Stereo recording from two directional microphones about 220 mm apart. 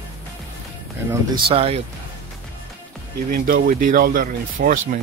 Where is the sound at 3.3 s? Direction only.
40° right (ahead or behind).